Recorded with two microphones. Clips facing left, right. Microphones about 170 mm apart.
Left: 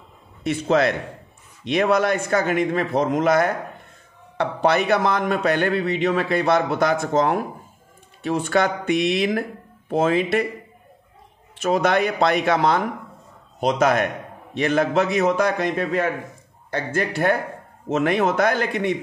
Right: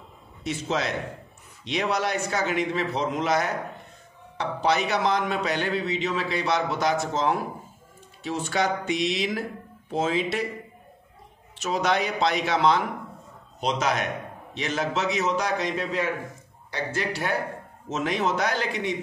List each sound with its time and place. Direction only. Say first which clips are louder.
0.4 s a man's voice: left 8 dB; 60° left (ahead or behind)
11.5 s a man's voice: left 6 dB; 55° left (ahead or behind)